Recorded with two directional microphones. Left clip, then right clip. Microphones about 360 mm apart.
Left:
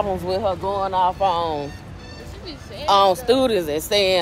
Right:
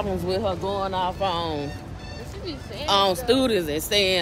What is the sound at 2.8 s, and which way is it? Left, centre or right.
Speech, centre.